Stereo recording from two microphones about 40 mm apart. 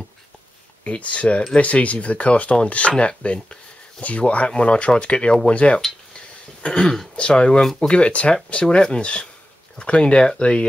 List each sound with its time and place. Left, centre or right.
0.8 s speech: left
6.6 s cough: left
7.2 s speech: left